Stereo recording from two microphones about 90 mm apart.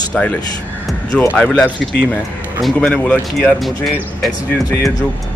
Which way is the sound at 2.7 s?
10° left (ahead or behind).